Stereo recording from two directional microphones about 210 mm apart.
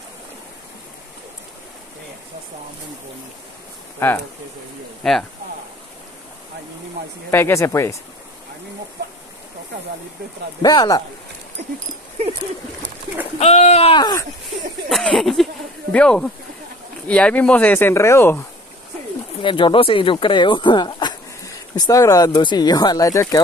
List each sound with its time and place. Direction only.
4.0 s speech: 10° left (ahead or behind)
7.2 s speech: 10° left (ahead or behind)
10.6 s speech: 20° left (ahead or behind)
13.4 s speech: 30° left (ahead or behind)
14.9 s speech: centre (ahead or behind)
19.4 s speech: 25° left (ahead or behind)